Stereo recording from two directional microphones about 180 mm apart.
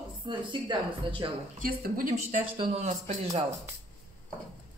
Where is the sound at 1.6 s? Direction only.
55° right (ahead or behind).